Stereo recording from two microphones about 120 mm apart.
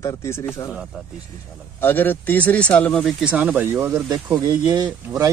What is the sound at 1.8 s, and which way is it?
Speech, 15° left (ahead or behind).